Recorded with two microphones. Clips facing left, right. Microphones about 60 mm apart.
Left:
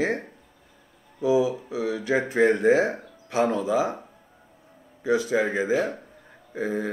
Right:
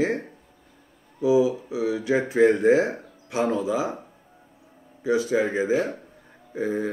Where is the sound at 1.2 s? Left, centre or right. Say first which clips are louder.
Right 2 dB; left.